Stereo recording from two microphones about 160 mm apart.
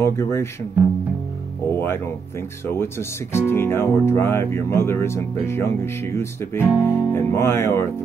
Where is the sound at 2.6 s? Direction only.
15° left (ahead or behind).